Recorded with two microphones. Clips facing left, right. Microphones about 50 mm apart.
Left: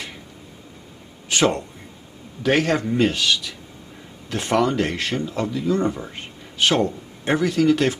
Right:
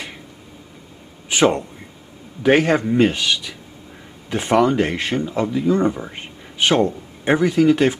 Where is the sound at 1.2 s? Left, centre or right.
Centre.